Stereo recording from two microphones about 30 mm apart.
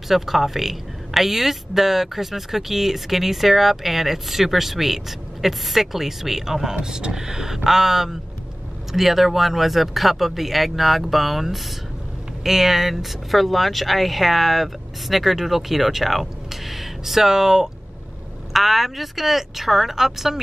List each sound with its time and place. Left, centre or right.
0.1 s speech: centre
18.5 s speech: centre